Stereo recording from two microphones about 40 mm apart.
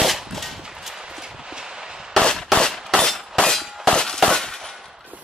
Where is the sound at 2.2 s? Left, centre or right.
Centre.